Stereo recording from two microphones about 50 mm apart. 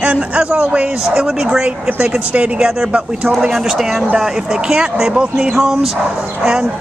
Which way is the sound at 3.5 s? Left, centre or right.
Centre.